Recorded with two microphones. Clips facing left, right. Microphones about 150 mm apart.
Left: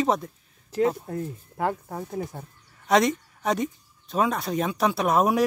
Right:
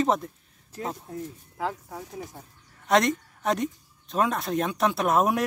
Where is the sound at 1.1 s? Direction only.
60° left (ahead or behind).